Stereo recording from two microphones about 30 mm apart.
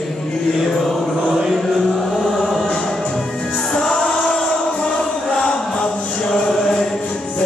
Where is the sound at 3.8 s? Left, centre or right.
Left.